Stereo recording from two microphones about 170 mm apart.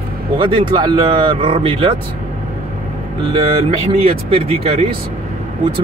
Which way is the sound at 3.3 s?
35° right (ahead or behind).